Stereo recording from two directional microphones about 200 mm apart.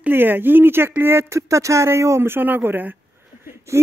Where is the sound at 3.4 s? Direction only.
10° right (ahead or behind).